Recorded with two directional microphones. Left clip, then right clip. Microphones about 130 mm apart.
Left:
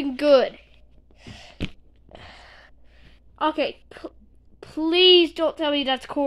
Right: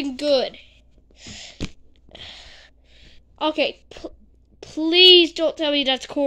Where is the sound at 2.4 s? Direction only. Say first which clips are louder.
Right 2 dB; 30° right (ahead or behind).